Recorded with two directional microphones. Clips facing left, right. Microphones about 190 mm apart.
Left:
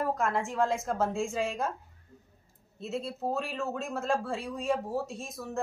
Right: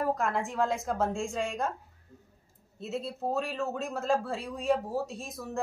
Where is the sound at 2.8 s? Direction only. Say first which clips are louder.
Even; centre (ahead or behind).